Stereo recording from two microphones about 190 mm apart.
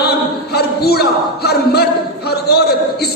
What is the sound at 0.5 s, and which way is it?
A man's voice, 55° left (ahead or behind).